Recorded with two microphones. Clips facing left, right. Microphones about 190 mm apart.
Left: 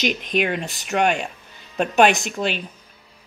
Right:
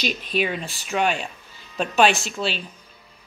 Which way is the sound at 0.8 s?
60° left (ahead or behind).